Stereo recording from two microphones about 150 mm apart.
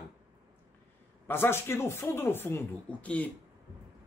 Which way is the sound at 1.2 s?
15° left (ahead or behind).